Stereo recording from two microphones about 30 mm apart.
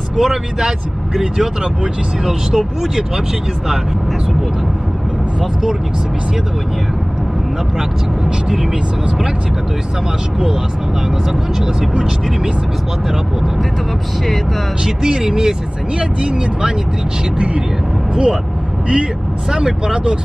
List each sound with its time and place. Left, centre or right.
0.2 s speech: centre
5.4 s speech: centre
15.0 s speech: centre
16.0 s speech: right
18.1 s speech: right
19.5 s speech: right